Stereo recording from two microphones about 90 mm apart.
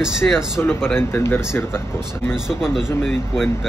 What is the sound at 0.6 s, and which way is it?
Speech, 25° left (ahead or behind).